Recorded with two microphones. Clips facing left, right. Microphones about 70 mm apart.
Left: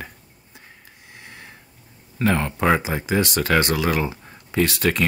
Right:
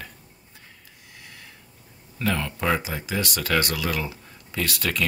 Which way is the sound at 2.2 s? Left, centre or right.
Left.